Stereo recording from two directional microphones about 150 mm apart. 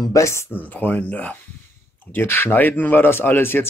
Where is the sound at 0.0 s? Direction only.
20° left (ahead or behind).